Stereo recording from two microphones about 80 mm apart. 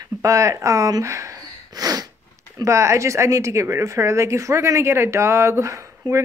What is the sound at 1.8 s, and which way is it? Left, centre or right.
Speech, right.